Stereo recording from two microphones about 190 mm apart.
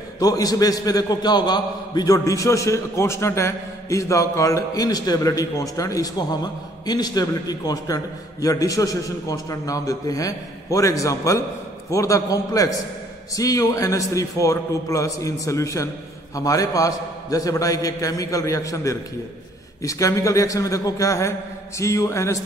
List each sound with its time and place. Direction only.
0.2 s a man's voice: 20° left (ahead or behind)